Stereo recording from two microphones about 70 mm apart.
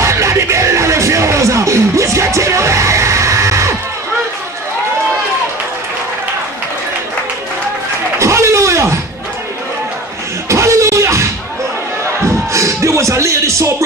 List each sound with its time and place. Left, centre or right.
0.0 s music: right
8.2 s a sound: right
10.5 s music: right
12.3 s music: right